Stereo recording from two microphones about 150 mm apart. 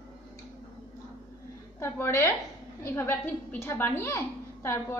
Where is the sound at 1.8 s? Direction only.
15° left (ahead or behind).